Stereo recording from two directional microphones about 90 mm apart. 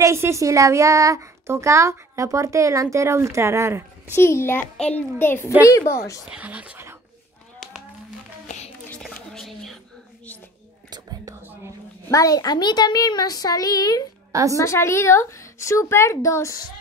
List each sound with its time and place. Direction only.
0.0 s speech: 30° right (ahead or behind)
4.1 s a child's voice: 30° left (ahead or behind)
4.7 s a child's voice: 15° left (ahead or behind); by 6.1 s 30° left (ahead or behind)
6.3 s speech: 15° right (ahead or behind)
9.1 s a sound: 5° left (ahead or behind)
10.9 s whispering: 50° right (ahead or behind)
12.1 s a child's voice: 40° left (ahead or behind)
14.3 s a woman's voice: 35° right (ahead or behind)
14.6 s a woman's voice: 30° left (ahead or behind)